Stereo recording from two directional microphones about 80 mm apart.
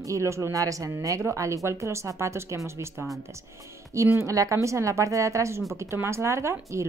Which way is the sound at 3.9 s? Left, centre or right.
Right.